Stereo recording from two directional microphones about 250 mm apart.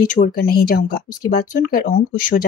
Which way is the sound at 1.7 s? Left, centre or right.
Left.